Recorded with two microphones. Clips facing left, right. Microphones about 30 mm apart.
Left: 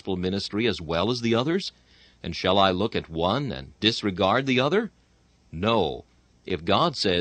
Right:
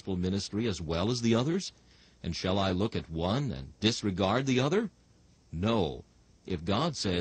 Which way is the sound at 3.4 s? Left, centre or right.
Left.